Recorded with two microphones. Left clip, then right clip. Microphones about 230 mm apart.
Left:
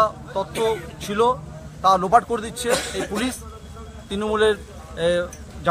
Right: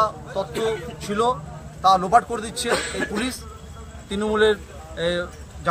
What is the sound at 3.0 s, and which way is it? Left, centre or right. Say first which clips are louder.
Speech: even; left.